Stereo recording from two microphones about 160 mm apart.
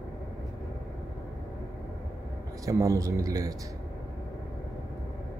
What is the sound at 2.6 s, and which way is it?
Speech, 20° right (ahead or behind).